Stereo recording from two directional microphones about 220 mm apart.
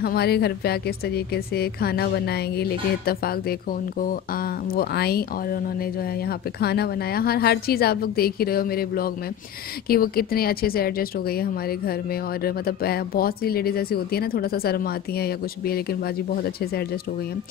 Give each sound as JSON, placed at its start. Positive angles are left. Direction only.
{"t": 0.0, "sound": "speech", "side_deg": 45}